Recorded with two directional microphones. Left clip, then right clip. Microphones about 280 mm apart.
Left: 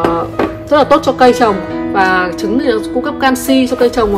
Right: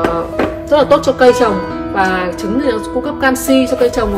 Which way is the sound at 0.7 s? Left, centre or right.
Left.